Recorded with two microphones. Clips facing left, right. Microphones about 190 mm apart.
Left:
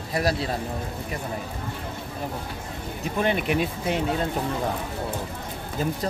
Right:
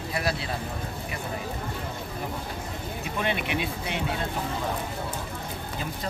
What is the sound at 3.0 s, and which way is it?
Speech, 40° left (ahead or behind).